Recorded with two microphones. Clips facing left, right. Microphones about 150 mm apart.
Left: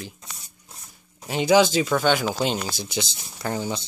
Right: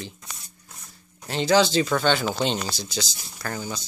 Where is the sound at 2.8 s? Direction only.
20° left (ahead or behind).